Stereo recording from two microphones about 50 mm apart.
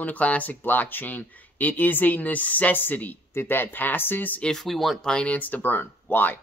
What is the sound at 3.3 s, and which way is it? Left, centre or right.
Speech, left.